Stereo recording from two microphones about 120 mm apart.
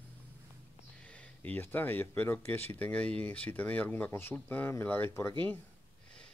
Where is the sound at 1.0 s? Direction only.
10° left (ahead or behind).